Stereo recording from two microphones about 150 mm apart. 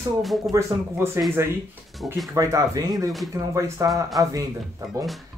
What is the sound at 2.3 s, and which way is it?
Speech, 20° right (ahead or behind).